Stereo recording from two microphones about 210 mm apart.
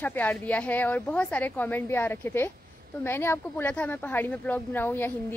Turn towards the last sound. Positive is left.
turn(degrees=10)  # may be behind; listen again after turning